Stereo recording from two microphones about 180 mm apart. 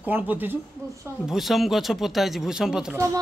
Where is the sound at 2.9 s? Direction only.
15° right (ahead or behind).